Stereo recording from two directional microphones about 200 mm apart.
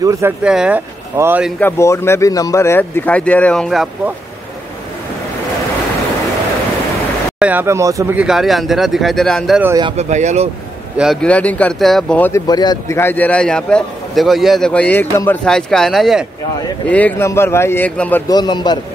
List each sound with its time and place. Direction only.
0.0 s speech: 15° right (ahead or behind)
0.4 s speech: 5° right (ahead or behind)
1.6 s speech: 15° left (ahead or behind)
7.3 s speech: 10° right (ahead or behind)
9.8 s speech: 25° right (ahead or behind)
10.0 s speech: 35° right (ahead or behind)
11.0 s speech: 5° left (ahead or behind)
16.9 s speech: 10° left (ahead or behind)
18.3 s a man's voice: 20° left (ahead or behind)